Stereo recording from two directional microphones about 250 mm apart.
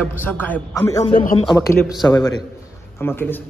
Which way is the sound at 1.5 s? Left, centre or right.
Centre.